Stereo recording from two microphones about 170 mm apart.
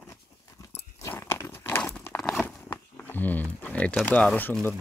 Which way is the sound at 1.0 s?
15° left (ahead or behind).